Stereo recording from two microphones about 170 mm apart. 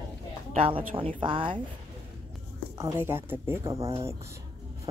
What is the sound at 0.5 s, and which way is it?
Speech, 30° right (ahead or behind).